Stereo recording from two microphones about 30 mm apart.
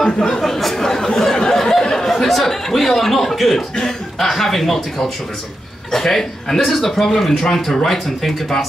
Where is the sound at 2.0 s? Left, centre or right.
Centre.